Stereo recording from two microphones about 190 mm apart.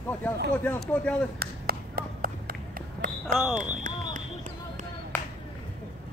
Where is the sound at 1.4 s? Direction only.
50° right (ahead or behind).